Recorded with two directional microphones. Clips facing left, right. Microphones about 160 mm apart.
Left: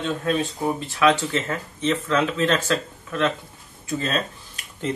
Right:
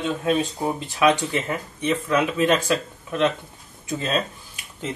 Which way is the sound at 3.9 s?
15° right (ahead or behind).